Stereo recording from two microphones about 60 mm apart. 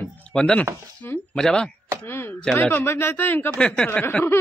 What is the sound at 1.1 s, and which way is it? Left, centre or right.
Speech, left.